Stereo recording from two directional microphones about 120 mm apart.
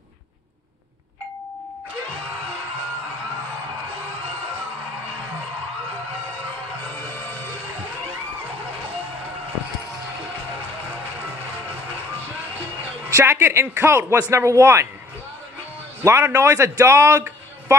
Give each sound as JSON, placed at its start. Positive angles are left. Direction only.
{"t": 13.1, "sound": "speech", "side_deg": -20}
{"t": 16.0, "sound": "a man's voice", "side_deg": -20}